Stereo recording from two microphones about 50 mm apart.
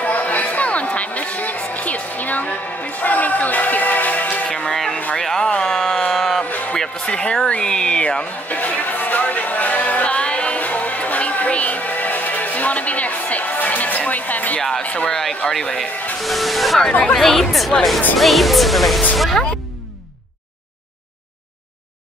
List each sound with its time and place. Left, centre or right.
0.0 s music: left
4.5 s music: centre
5.2 s a sound: centre
6.7 s music: centre
7.4 s a sound: centre
8.5 s music: left
14.8 s speech: left
15.0 s speech: centre
16.2 s speech: centre